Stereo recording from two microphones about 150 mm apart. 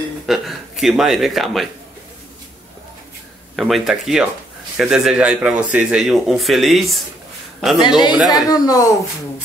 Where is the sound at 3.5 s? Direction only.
Centre (ahead or behind).